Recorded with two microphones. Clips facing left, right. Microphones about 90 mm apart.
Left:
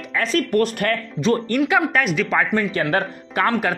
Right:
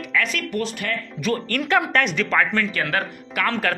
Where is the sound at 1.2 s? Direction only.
25° left (ahead or behind).